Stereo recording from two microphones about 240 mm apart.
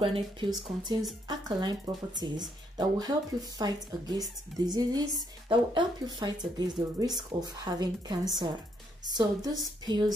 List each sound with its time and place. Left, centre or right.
0.0 s speech: right